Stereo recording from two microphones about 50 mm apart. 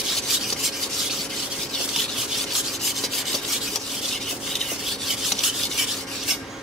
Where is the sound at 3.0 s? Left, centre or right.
Centre.